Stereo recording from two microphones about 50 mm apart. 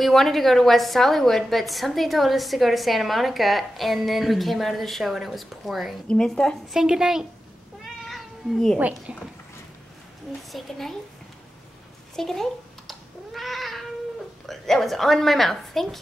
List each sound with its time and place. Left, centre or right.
0.0 s a woman's voice: centre
6.0 s a child's voice: centre
6.7 s a woman's voice: centre
7.8 s cat: centre
8.7 s speech: right
10.5 s a child's voice: centre
12.2 s cat: centre
14.4 s a woman's voice: centre